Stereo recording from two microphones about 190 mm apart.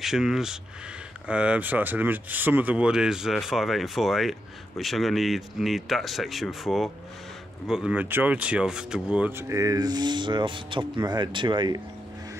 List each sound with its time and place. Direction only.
0.0 s speech: centre (ahead or behind); by 11.8 s 25° right (ahead or behind)